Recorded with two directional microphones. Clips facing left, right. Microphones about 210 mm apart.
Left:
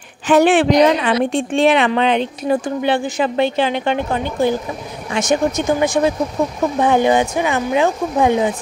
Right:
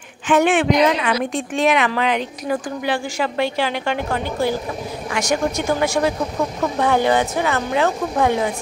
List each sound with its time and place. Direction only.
0.3 s a woman's voice: 35° left (ahead or behind); by 8.5 s 15° left (ahead or behind)